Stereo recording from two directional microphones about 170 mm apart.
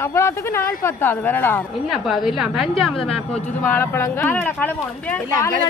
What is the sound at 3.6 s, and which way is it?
A woman's voice, 15° left (ahead or behind).